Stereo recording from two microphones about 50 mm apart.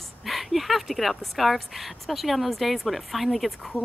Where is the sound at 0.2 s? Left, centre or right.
Centre.